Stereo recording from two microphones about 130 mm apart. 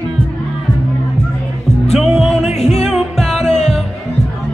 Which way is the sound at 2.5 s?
55° left (ahead or behind).